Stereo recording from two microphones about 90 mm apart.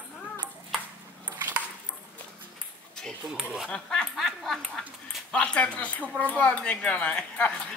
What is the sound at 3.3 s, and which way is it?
Speech, 5° right (ahead or behind).